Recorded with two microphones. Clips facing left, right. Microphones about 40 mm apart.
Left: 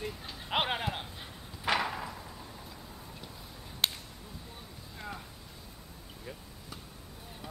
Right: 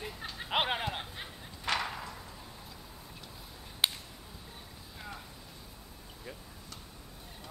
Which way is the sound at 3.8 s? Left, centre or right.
Centre.